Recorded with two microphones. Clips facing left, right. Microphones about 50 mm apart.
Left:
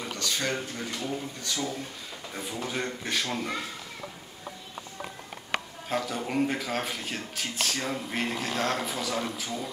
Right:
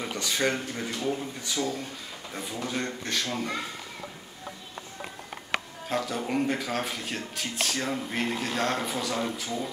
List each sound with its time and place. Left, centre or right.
0.0 s speech: centre
2.3 s speech: centre
5.9 s speech: centre